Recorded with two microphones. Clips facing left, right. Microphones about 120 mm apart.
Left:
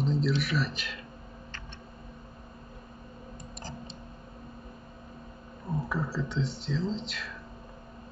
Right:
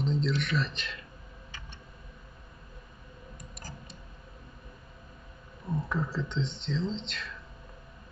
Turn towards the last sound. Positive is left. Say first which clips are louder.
# left 1 dB
turn(degrees=5)  # may be behind; listen again after turning